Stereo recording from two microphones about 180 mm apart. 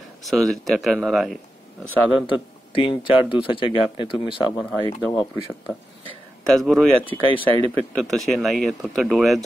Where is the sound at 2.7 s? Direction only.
30° left (ahead or behind).